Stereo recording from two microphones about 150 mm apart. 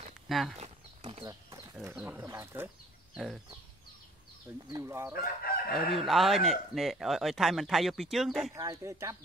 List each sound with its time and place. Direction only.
0.3 s speech: centre (ahead or behind)
1.0 s a sound: 30° right (ahead or behind)
2.0 s speech: 15° right (ahead or behind)
4.6 s speech: 25° right (ahead or behind)
5.1 s speech: 80° left
5.9 s speech: centre (ahead or behind)
8.5 s speech: 20° right (ahead or behind)